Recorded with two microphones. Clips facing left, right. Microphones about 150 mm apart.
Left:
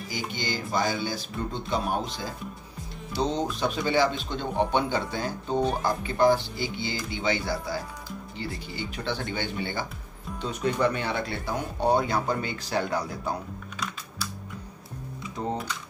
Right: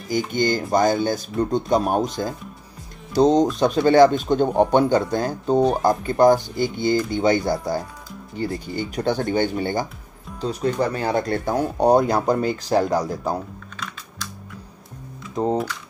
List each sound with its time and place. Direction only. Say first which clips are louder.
0.3 s speech: right 10 dB; 45° right (ahead or behind)
13.7 s computer keyboard: even; 10° left (ahead or behind)